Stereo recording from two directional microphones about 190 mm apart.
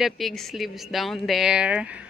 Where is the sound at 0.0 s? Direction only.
Centre (ahead or behind).